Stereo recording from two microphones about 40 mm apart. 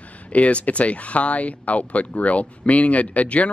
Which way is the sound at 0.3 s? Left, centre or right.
Left.